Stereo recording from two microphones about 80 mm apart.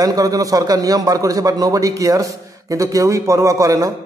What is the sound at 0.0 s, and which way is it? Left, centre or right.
Speech, right.